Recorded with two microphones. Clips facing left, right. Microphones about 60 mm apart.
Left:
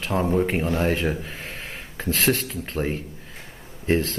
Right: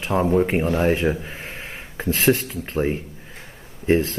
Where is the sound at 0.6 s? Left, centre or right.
Right.